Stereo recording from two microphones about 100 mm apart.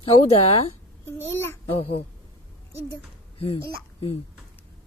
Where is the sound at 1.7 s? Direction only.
75° left (ahead or behind).